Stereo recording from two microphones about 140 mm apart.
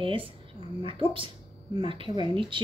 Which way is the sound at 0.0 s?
40° right (ahead or behind).